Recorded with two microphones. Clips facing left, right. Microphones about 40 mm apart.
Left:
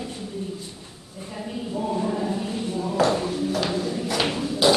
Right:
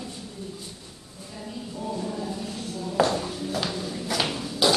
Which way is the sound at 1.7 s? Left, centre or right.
Left.